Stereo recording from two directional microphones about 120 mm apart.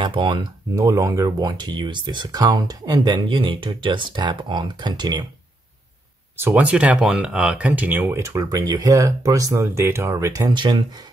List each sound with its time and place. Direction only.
0.0 s speech: 40° right (ahead or behind)
0.7 s speech: 25° right (ahead or behind)
6.3 s speech: 15° right (ahead or behind)
10.5 s speech: 40° right (ahead or behind)